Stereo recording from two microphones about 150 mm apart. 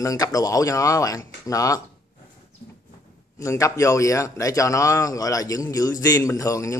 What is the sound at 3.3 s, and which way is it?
A man's voice, 20° left (ahead or behind).